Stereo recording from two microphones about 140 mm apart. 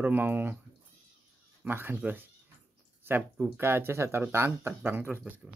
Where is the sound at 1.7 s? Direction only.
15° right (ahead or behind).